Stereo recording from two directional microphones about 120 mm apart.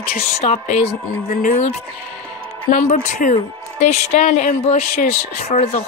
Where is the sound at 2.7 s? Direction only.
90° left.